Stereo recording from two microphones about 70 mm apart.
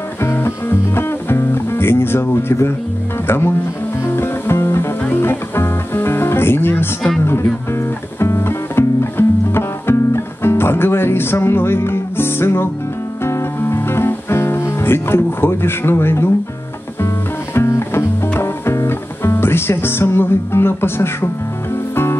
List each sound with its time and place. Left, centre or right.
0.2 s music: left
3.3 s speech: left
4.1 s music: left
7.2 s speech: left
8.2 s music: left
17.6 s music: left